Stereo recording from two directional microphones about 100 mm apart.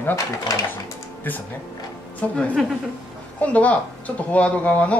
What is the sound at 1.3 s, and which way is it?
Speech, 20° left (ahead or behind).